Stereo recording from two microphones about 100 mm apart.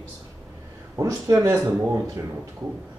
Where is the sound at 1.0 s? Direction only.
35° right (ahead or behind).